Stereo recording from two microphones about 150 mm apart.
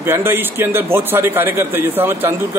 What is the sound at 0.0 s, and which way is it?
A man's voice, 15° right (ahead or behind).